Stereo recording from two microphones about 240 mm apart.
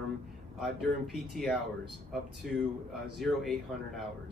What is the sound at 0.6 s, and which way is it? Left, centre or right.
Speech, centre.